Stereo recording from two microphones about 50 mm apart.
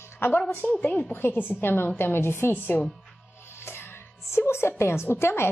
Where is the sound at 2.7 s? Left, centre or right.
Left.